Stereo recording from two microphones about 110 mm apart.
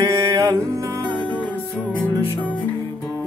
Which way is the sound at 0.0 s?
30° right (ahead or behind).